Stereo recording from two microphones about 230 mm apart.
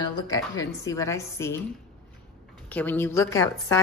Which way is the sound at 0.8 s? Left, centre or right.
Centre.